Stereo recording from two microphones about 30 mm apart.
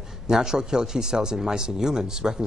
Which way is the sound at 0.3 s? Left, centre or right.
Right.